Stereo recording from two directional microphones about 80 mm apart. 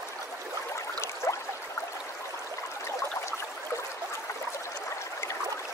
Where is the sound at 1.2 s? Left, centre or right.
Left.